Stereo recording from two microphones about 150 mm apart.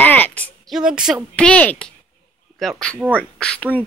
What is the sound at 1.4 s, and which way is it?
A woman's voice, 10° left (ahead or behind).